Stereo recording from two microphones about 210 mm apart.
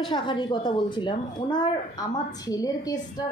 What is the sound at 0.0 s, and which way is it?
A woman's voice, 20° left (ahead or behind).